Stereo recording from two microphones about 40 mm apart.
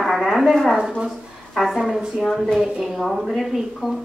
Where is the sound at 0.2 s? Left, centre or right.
Centre.